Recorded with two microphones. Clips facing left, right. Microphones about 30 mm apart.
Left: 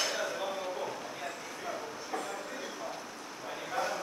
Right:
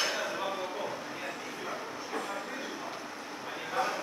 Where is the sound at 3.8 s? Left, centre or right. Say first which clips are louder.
Right 2 dB; right.